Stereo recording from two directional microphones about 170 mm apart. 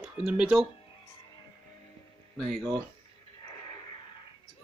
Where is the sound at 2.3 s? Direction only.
Centre (ahead or behind).